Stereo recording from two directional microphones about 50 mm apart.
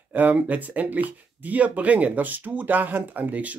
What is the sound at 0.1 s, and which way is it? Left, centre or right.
Speech, right.